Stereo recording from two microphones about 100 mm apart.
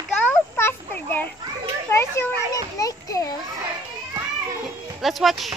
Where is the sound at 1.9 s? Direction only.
25° left (ahead or behind).